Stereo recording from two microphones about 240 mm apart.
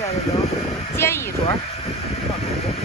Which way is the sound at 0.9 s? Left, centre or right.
Centre.